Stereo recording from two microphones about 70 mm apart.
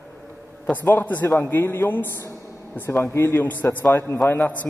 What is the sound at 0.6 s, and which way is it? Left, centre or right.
A man's voice, left.